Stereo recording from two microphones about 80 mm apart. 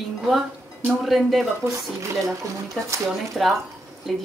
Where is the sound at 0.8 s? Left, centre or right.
Centre.